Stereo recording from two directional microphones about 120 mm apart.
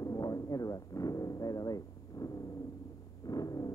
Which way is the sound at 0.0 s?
30° left (ahead or behind).